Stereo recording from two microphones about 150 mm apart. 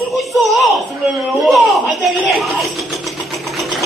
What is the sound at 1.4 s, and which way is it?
A woman's voice, centre (ahead or behind).